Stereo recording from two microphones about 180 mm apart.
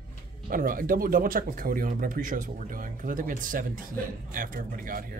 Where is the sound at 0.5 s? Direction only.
50° right (ahead or behind).